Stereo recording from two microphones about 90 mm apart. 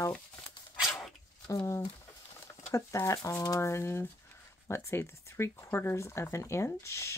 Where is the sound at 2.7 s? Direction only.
35° left (ahead or behind).